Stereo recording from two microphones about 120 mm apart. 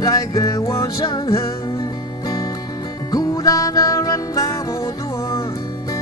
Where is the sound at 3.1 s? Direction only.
30° left (ahead or behind).